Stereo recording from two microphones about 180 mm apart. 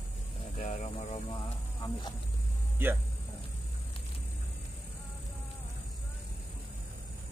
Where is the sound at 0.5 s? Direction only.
40° left (ahead or behind).